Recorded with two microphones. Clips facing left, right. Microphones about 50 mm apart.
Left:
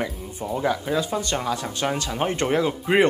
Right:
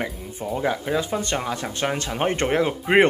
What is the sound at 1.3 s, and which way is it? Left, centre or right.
Speech, right.